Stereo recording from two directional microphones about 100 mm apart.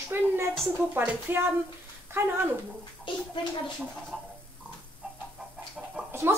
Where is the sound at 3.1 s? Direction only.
55° left (ahead or behind).